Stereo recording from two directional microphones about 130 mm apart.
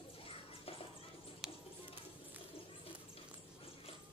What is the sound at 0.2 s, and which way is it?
Music, 45° left (ahead or behind).